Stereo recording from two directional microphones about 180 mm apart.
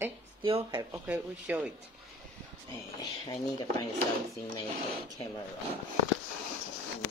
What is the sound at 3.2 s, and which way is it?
Speech, 25° left (ahead or behind).